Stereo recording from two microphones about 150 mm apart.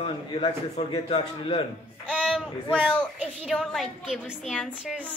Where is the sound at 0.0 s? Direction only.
40° left (ahead or behind).